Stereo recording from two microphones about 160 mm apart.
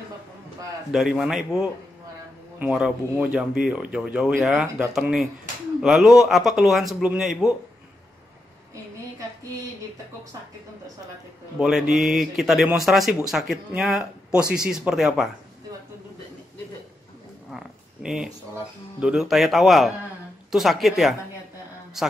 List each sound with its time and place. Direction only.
0.9 s speech: centre (ahead or behind)
11.6 s speech: centre (ahead or behind)
17.5 s a sound: 5° right (ahead or behind)
18.5 s speech: 5° right (ahead or behind)